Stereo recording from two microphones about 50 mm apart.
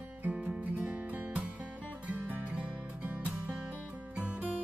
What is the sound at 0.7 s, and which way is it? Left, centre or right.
Music, right.